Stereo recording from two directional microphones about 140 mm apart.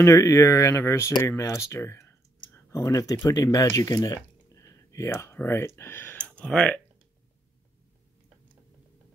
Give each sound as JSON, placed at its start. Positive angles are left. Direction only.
{"t": 0.0, "sound": "speech", "side_deg": 25}